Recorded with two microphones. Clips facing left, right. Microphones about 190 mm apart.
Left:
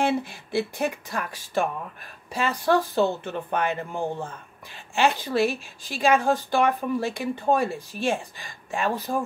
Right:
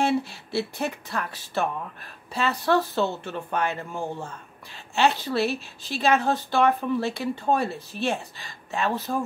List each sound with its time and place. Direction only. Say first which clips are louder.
0.0 s speech: even; 15° left (ahead or behind)